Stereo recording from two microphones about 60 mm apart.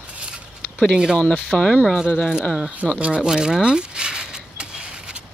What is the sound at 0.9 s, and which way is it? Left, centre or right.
Speech, centre.